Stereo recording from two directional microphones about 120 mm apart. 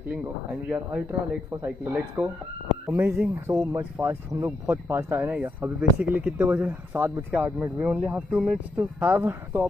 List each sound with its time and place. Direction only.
0.1 s speech: 15° right (ahead or behind)
2.2 s speech: 10° right (ahead or behind)